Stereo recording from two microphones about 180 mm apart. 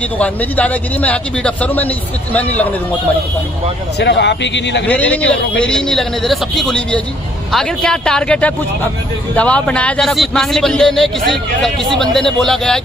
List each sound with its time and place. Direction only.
0.2 s speech: 10° left (ahead or behind)
4.0 s speech: 75° left (ahead or behind)
4.8 s a man's voice: 10° left (ahead or behind)